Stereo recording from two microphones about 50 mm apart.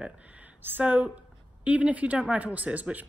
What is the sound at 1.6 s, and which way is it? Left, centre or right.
A woman's voice, right.